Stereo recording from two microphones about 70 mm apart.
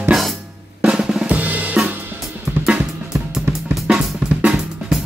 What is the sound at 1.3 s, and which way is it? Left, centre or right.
Drum kit, right.